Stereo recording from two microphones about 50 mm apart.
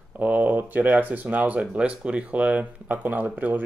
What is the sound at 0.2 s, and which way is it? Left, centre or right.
Speech, right.